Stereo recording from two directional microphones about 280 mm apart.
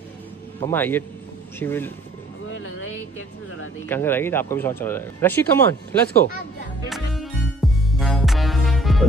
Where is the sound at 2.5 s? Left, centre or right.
Left.